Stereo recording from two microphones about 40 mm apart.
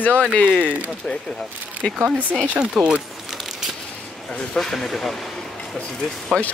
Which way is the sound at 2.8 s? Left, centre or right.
Centre.